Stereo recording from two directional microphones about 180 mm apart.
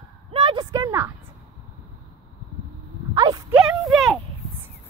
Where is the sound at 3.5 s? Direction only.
5° right (ahead or behind).